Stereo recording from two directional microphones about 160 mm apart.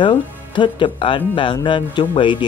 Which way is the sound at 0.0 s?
30° left (ahead or behind).